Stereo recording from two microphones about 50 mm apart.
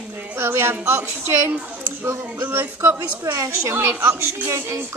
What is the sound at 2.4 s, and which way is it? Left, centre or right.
Speech, right.